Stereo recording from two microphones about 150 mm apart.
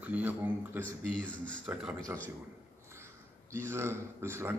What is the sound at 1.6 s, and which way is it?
Speech, 10° right (ahead or behind).